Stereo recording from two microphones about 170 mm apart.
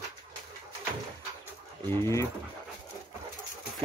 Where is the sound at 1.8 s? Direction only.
15° left (ahead or behind).